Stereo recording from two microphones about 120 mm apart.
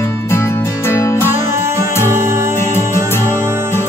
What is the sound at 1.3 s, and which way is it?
Music, 20° right (ahead or behind).